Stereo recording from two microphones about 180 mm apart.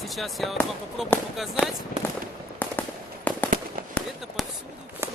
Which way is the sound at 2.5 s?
10° left (ahead or behind).